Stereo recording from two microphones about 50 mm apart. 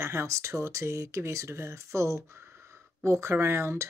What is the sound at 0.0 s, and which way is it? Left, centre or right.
Speech, right.